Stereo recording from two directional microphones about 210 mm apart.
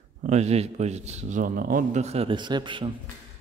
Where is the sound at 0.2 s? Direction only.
30° right (ahead or behind).